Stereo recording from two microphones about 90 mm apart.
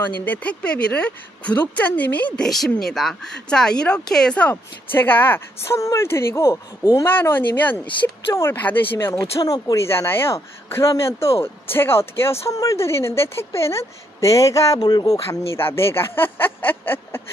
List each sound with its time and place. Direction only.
0.0 s speech: 20° left (ahead or behind)
2.4 s speech: 5° left (ahead or behind); by 9.3 s 25° left (ahead or behind)
9.4 s speech: 45° left (ahead or behind)
9.8 s speech: 25° left (ahead or behind)
14.8 s speech: 50° left (ahead or behind)
15.2 s speech: 30° left (ahead or behind)